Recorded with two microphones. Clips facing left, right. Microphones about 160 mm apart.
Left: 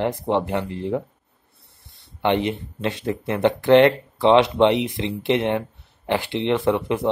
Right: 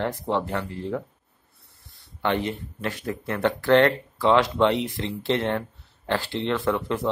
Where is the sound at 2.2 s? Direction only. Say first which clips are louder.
Left 4 dB; 20° left (ahead or behind).